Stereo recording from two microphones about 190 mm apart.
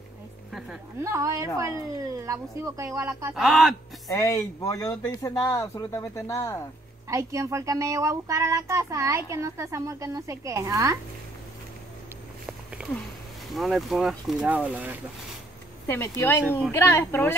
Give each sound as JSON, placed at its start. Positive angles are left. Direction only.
{"t": 0.5, "sound": "a sound", "side_deg": 0}
{"t": 1.0, "sound": "speech", "side_deg": -15}
{"t": 3.3, "sound": "speech", "side_deg": 0}
{"t": 4.1, "sound": "speech", "side_deg": 15}
{"t": 7.1, "sound": "speech", "side_deg": -15}
{"t": 13.5, "sound": "speech", "side_deg": 0}
{"t": 16.2, "sound": "speech", "side_deg": 10}